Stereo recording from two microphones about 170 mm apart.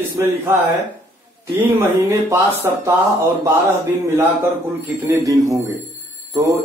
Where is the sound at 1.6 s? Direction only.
15° right (ahead or behind).